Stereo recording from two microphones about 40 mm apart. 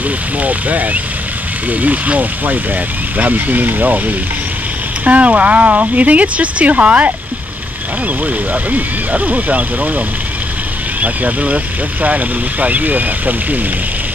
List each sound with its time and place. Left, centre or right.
0.4 s speech: right
5.0 s speech: right
8.6 s speech: right